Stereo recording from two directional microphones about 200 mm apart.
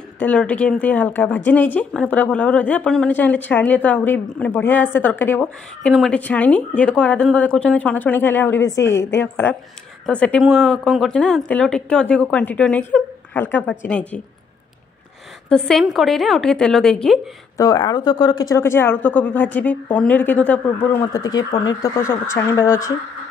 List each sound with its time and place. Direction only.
0.2 s a woman's voice: 5° left (ahead or behind)
15.4 s a woman's voice: 5° left (ahead or behind)
17.6 s a woman's voice: 20° left (ahead or behind)